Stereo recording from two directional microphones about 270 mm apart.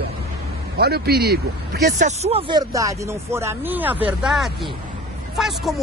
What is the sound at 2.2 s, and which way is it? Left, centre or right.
Speech, right.